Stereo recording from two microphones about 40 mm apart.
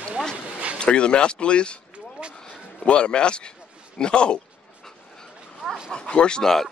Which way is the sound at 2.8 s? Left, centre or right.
Left.